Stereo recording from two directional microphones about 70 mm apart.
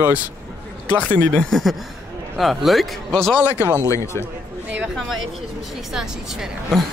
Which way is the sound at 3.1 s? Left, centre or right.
Centre.